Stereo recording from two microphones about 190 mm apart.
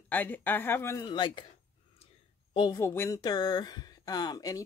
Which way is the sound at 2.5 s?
25° left (ahead or behind).